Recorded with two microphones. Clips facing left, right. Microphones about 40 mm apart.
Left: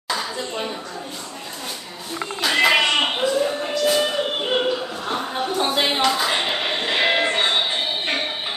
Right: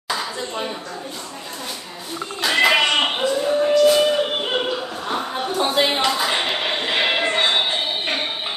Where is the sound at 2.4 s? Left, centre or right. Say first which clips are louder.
Right 1 dB; centre.